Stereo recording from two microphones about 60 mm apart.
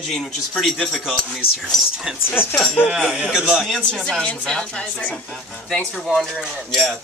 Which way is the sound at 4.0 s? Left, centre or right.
Centre.